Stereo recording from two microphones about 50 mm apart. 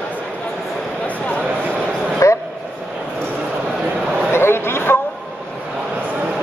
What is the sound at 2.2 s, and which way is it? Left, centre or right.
Vehicle, left.